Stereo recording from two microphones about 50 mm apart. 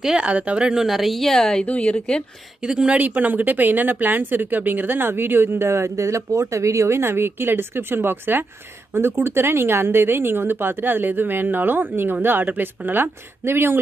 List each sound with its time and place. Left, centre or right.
0.2 s speech: right
0.8 s a woman's voice: centre
1.6 s speech: left
2.6 s speech: centre
2.9 s a woman's voice: right
7.0 s speech: right